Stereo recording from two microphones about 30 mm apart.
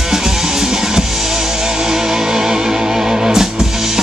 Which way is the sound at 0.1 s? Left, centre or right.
Centre.